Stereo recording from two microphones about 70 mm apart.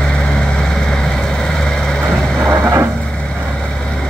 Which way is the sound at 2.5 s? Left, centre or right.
Right.